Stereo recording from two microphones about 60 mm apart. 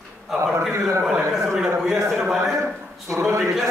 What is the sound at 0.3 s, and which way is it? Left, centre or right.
Speech, centre.